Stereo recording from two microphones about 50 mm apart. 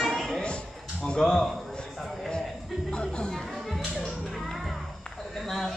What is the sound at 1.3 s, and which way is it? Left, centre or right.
Speech, centre.